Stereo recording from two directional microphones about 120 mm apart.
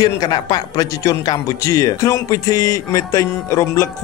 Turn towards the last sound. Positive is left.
turn(degrees=25)  # may be behind; listen again after turning